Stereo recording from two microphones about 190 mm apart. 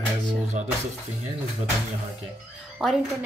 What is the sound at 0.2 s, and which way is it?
Music, 40° right (ahead or behind).